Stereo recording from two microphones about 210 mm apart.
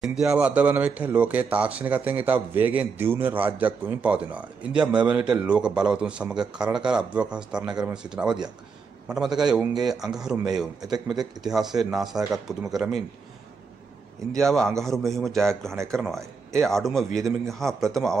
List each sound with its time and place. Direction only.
0.0 s a man's voice: 5° right (ahead or behind)
10.8 s a man's voice: 20° right (ahead or behind)
11.4 s speech: centre (ahead or behind)
14.3 s speech: centre (ahead or behind)
15.7 s speech: 15° right (ahead or behind)
16.5 s speech: centre (ahead or behind)